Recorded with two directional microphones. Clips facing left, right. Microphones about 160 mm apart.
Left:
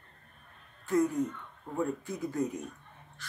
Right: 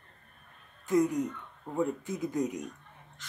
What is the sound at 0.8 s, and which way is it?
Speech, 20° right (ahead or behind).